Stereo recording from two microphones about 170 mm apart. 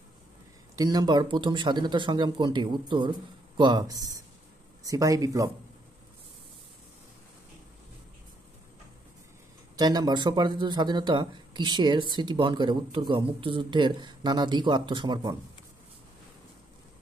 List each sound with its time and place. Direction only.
0.7 s speech: 20° right (ahead or behind)
9.8 s speech: 25° right (ahead or behind)